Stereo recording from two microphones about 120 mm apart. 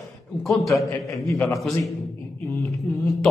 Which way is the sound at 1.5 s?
Centre (ahead or behind).